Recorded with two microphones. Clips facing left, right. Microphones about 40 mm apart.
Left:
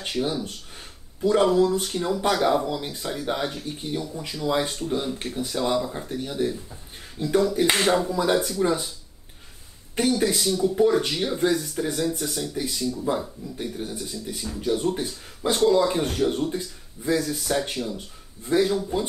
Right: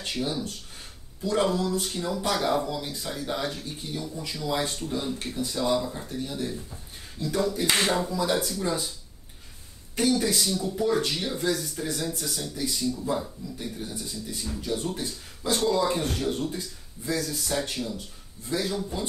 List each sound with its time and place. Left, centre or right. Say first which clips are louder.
0.0 s speech: left 3 dB; left
6.0 s speech: left 5 dB; left
10.1 s speech: left 3 dB; left
12.8 s speech: left 4 dB; left
13.1 s speech: left 2 dB; left